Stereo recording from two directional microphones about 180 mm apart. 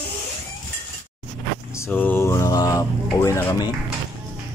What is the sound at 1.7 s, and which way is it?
Mantra, 10° left (ahead or behind).